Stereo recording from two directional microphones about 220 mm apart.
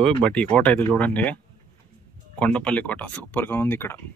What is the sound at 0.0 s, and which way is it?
Speech, 5° left (ahead or behind).